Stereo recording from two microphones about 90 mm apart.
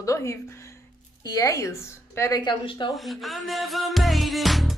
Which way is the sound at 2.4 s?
55° left (ahead or behind).